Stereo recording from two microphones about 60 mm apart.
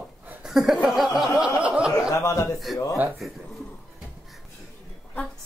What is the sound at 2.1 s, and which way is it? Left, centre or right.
Speech, left.